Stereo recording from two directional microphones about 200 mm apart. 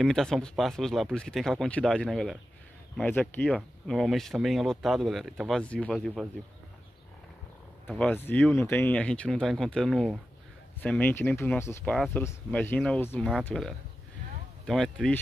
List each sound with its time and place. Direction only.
0.0 s speech: centre (ahead or behind)
7.9 s speech: 5° left (ahead or behind)
11.9 s speech: centre (ahead or behind)